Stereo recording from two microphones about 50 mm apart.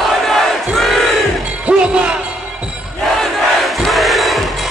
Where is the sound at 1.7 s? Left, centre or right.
Right.